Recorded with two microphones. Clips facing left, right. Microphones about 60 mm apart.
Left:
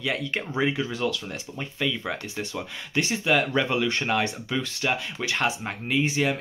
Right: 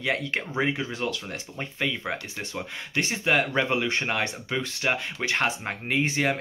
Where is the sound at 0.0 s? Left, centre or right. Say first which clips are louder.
Right 1 dB; right.